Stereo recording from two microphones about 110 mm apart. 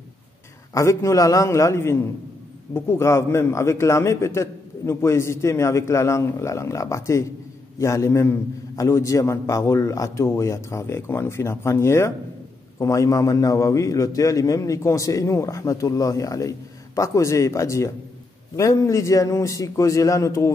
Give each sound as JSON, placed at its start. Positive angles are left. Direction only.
{"t": 0.7, "sound": "a man's voice", "side_deg": 30}